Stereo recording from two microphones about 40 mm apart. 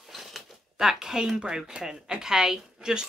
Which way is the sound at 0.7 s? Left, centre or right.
Centre.